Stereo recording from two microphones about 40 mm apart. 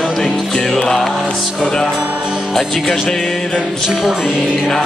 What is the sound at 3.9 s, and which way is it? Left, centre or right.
Music, centre.